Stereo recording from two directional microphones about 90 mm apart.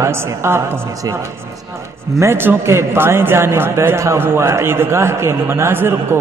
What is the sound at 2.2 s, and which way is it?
A man's voice, 25° right (ahead or behind).